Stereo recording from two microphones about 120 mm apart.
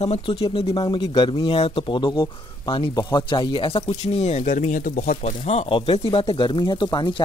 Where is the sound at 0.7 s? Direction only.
40° left (ahead or behind); by 5.6 s 70° left (ahead or behind).